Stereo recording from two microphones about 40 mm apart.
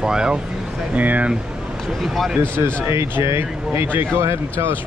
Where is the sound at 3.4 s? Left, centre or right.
Right.